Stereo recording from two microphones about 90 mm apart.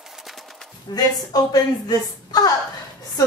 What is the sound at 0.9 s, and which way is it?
A woman's voice, 55° left (ahead or behind).